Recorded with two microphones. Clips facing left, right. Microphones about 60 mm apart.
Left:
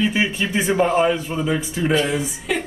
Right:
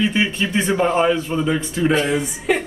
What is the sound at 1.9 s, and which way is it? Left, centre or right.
Speech, right.